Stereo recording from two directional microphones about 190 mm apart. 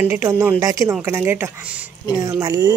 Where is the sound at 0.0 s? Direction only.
10° right (ahead or behind).